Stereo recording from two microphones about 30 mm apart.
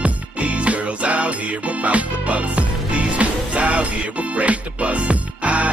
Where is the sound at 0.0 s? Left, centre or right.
Right.